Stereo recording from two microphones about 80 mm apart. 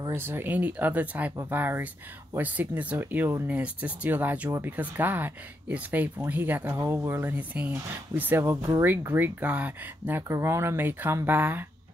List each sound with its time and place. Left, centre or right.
0.1 s speech: right
7.2 s speech: right
10.2 s speech: right